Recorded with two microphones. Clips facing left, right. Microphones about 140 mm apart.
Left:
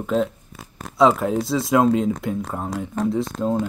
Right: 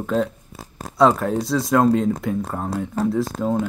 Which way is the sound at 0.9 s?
Centre (ahead or behind).